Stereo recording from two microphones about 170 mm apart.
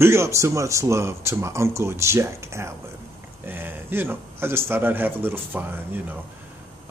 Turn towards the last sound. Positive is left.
turn(degrees=-10)  # may be behind; listen again after turning